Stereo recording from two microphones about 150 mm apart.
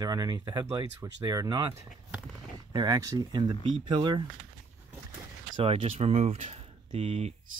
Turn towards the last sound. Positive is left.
turn(degrees=-40)  # may be behind; listen again after turning